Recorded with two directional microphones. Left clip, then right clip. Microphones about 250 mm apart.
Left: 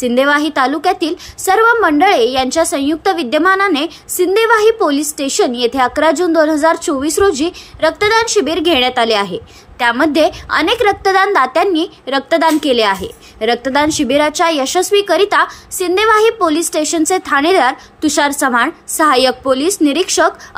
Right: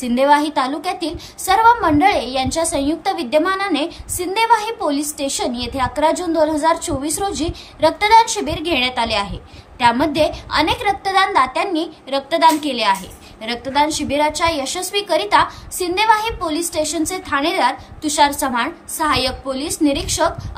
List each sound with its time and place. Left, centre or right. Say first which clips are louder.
0.0 s a woman's voice: left 2 dB; centre